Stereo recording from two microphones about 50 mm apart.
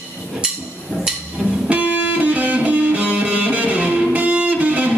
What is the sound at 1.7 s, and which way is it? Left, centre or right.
Music, right.